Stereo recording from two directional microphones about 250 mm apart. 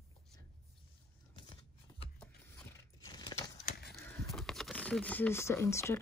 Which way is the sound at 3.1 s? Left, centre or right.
Centre.